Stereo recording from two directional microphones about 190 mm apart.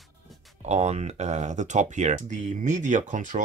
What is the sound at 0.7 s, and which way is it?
Speech, 35° right (ahead or behind).